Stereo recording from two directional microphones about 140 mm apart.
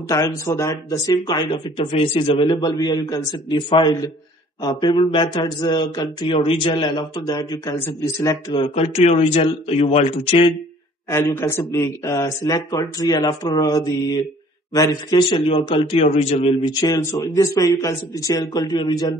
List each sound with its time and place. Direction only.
0.1 s a man's voice: 25° left (ahead or behind)
8.7 s speech: 45° left (ahead or behind)
11.1 s a man's voice: 20° left (ahead or behind); by 16.5 s 45° left (ahead or behind)
16.6 s a man's voice: 30° left (ahead or behind)